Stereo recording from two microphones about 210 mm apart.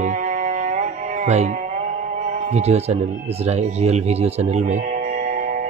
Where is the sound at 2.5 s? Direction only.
30° right (ahead or behind).